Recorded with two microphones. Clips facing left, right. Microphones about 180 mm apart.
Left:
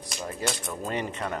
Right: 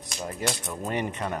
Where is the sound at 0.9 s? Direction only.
20° right (ahead or behind).